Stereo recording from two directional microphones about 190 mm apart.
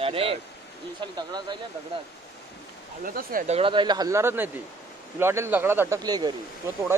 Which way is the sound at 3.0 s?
45° right (ahead or behind).